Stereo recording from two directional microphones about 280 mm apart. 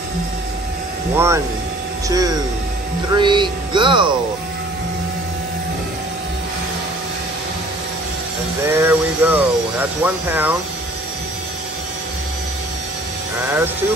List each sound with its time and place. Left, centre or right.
1.1 s speech: centre
8.6 s speech: centre